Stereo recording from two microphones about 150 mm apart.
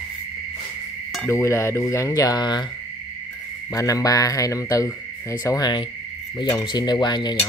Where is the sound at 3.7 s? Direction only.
25° left (ahead or behind).